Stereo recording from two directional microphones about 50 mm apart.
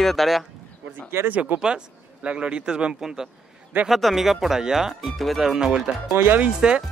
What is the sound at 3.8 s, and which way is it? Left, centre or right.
Speech, centre.